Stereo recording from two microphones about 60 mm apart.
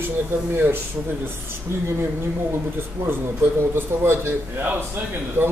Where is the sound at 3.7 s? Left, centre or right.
Right.